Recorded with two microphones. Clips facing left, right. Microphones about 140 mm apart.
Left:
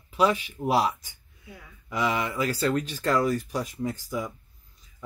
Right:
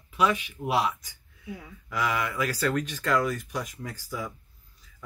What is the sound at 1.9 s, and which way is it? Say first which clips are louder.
Speech: left 2 dB; 25° left (ahead or behind).